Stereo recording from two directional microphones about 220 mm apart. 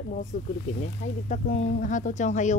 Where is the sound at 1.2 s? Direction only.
35° left (ahead or behind).